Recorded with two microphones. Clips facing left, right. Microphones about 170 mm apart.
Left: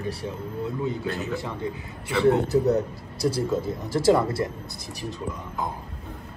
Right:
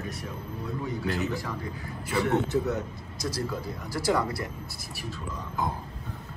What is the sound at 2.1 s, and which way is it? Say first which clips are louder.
A man's voice: left 5 dB; 35° left (ahead or behind).